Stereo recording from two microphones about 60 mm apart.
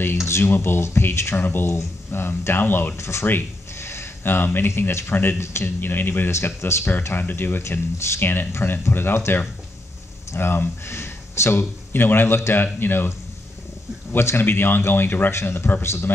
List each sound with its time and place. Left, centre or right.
0.3 s speech: left
3.0 s speech: left
5.1 s speech: left
5.4 s speech: left
6.3 s speech: left
7.2 s speech: left
11.9 s speech: left
14.1 s speech: left